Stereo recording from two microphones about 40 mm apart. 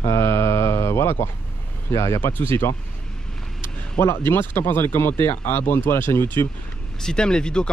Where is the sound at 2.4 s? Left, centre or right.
Left.